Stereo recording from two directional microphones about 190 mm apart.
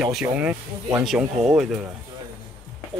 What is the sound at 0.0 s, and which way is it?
Speech, 5° right (ahead or behind).